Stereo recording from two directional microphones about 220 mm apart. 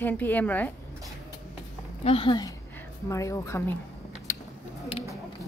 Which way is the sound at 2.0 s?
25° left (ahead or behind).